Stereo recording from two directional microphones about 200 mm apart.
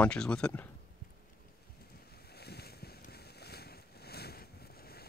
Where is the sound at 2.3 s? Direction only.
55° left (ahead or behind).